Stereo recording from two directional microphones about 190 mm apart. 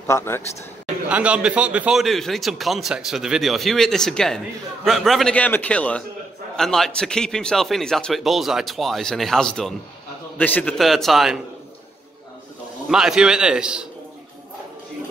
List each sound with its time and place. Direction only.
0.0 s a man's voice: 15° left (ahead or behind)
1.0 s a man's voice: 5° right (ahead or behind)
12.8 s a man's voice: centre (ahead or behind)